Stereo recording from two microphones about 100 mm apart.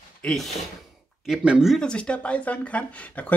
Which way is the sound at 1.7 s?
10° left (ahead or behind).